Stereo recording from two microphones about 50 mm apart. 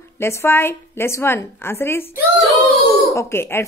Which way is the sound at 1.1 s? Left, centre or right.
Left.